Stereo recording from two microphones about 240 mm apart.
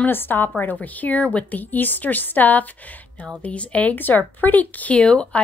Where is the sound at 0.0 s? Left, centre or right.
Centre.